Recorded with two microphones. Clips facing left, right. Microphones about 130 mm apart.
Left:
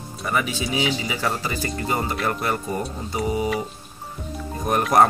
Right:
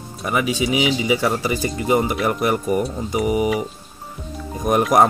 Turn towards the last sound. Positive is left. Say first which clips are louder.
# right 4 dB
turn(degrees=-15)  # may be behind; listen again after turning